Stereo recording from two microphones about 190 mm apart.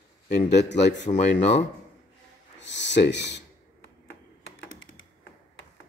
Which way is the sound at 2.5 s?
70° left (ahead or behind).